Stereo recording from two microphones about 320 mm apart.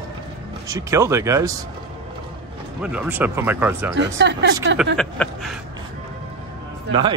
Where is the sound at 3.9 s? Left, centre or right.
Right.